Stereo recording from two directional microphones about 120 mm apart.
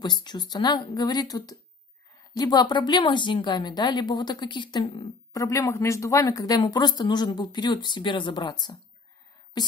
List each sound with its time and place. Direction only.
0.0 s a woman's voice: 35° left (ahead or behind)